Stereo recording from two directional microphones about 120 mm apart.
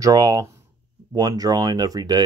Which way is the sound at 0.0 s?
30° right (ahead or behind).